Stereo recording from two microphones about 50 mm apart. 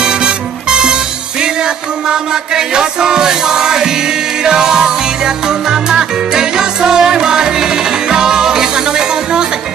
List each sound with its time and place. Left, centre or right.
0.0 s music: centre